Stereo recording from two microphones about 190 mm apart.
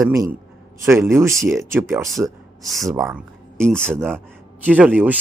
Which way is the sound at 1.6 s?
15° right (ahead or behind).